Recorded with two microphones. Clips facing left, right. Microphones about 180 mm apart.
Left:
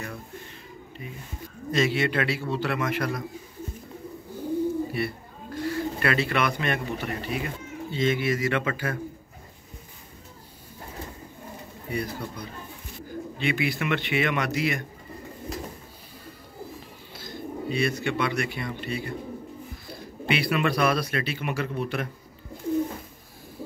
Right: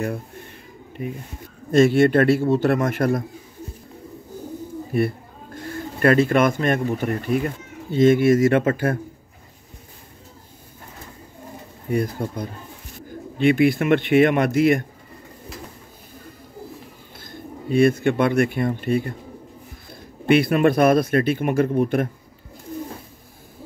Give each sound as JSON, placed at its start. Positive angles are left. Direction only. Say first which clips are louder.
{"t": 1.0, "sound": "speech", "louder": "right 10 dB", "side_deg": -55}
{"t": 4.9, "sound": "speech", "louder": "right 8 dB", "side_deg": -50}
{"t": 11.9, "sound": "speech", "louder": "right 8 dB", "side_deg": -50}
{"t": 17.2, "sound": "speech", "louder": "left 3 dB", "side_deg": -50}